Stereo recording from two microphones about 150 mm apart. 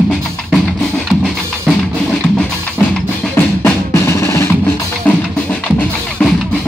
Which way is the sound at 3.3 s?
15° left (ahead or behind).